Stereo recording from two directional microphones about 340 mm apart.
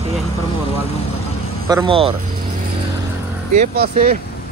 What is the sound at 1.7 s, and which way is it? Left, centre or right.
Speech, centre.